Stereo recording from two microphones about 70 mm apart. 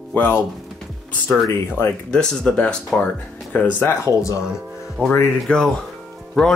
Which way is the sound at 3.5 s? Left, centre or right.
Left.